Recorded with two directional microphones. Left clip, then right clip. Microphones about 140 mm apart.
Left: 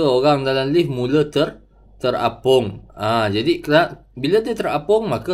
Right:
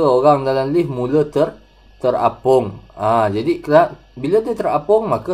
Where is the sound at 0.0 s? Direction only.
Centre (ahead or behind).